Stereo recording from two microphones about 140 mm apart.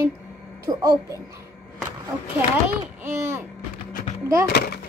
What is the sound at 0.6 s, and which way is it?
Speech, 25° right (ahead or behind).